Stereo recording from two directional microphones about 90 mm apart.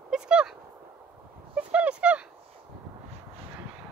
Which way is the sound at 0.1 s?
10° right (ahead or behind).